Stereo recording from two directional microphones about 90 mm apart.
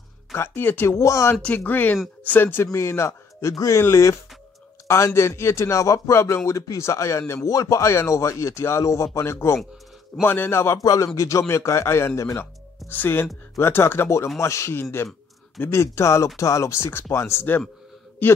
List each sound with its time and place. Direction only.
0.3 s speech: 20° left (ahead or behind)
1.3 s speech: 20° left (ahead or behind)
10.8 s speech: 40° left (ahead or behind)
12.9 s speech: 25° left (ahead or behind)